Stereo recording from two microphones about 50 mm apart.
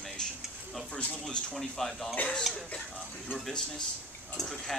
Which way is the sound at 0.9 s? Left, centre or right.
Left.